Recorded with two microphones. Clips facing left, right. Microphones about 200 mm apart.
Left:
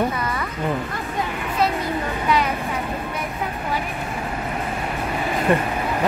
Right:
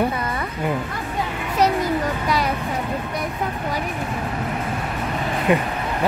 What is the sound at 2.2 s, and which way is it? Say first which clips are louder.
Music: left 5 dB; 40° right (ahead or behind).